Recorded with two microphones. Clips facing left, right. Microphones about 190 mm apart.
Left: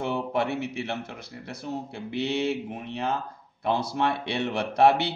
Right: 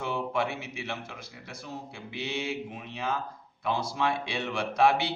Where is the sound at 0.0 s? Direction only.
55° left (ahead or behind).